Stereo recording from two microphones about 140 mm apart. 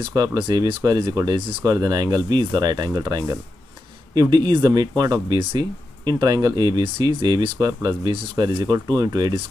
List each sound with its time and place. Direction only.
0.1 s speech: 30° right (ahead or behind)